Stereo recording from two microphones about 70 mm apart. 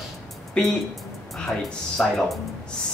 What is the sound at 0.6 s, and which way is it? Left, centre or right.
Speech, centre.